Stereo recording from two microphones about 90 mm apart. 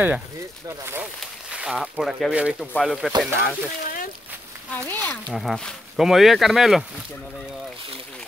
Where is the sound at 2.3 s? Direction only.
15° right (ahead or behind).